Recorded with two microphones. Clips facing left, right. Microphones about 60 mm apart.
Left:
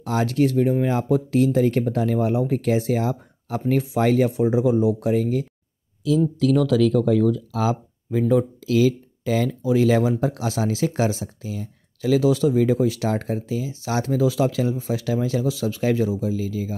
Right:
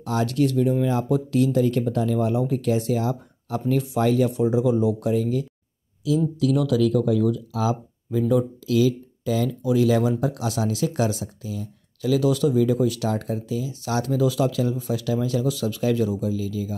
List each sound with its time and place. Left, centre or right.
0.0 s speech: left
2.9 s speech: left
5.0 s speech: left
9.6 s speech: left